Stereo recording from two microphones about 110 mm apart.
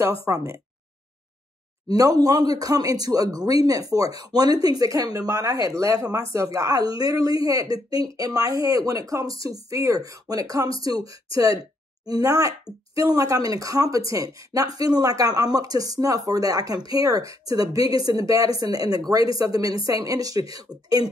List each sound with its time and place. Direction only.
0.2 s speech: 25° right (ahead or behind)
1.9 s speech: 35° right (ahead or behind)